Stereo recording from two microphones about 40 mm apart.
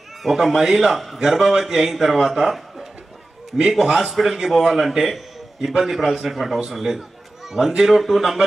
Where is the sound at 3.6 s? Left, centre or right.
Centre.